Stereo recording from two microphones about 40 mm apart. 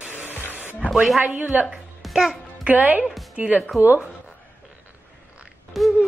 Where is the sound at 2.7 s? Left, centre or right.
Right.